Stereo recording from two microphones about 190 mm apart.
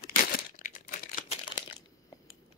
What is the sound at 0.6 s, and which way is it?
Computer keyboard, 45° left (ahead or behind).